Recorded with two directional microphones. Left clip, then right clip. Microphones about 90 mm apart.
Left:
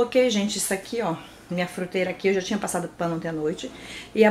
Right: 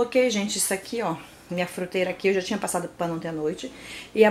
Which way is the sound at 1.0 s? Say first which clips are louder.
Left 1 dB; 20° right (ahead or behind).